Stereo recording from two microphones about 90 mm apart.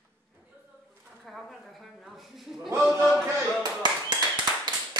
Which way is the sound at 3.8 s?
55° right (ahead or behind).